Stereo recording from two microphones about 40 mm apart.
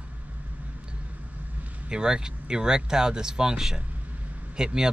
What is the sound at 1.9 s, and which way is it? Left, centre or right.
Speech, right.